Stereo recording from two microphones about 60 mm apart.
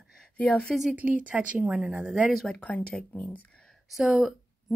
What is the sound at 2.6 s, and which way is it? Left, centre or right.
Speech, left.